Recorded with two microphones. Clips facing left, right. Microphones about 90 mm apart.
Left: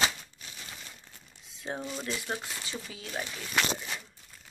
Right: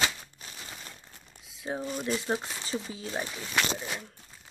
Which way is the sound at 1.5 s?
5° right (ahead or behind).